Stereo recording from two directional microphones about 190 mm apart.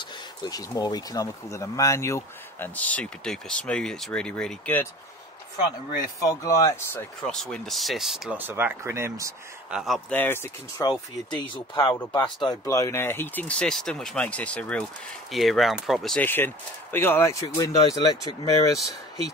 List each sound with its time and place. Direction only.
0.0 s speech: 20° left (ahead or behind)
5.7 s speech: 15° left (ahead or behind)
7.2 s speech: 5° left (ahead or behind); by 9.3 s 15° right (ahead or behind)
9.7 s speech: centre (ahead or behind); by 18.5 s 20° left (ahead or behind)